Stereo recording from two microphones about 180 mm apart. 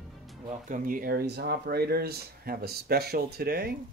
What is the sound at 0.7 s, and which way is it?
Speech, 50° right (ahead or behind).